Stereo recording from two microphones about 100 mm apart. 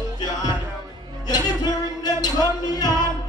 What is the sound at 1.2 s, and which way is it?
Music, 40° left (ahead or behind).